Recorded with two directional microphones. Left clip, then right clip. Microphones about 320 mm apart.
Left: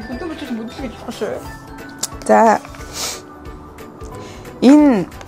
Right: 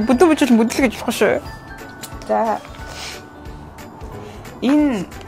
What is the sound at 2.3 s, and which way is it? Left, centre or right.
Speech, left.